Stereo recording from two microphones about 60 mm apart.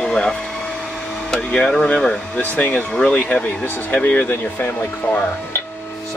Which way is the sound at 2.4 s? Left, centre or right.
Left.